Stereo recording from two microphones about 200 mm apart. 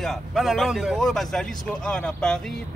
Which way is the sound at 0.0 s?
Centre (ahead or behind).